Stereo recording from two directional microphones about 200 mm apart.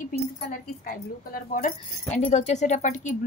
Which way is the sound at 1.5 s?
40° left (ahead or behind).